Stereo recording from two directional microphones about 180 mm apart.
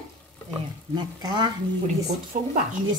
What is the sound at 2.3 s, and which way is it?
Speech, 50° right (ahead or behind).